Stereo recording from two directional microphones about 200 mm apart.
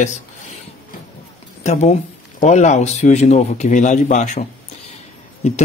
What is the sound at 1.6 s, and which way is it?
A woman's voice, 35° left (ahead or behind).